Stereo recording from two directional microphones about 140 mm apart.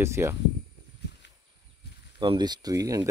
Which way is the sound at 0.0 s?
20° right (ahead or behind).